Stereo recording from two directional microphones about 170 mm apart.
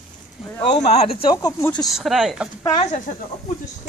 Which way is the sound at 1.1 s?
30° left (ahead or behind).